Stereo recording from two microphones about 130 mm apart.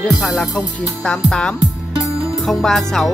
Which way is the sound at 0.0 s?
Centre (ahead or behind).